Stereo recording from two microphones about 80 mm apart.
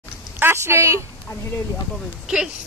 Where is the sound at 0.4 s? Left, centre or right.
Right.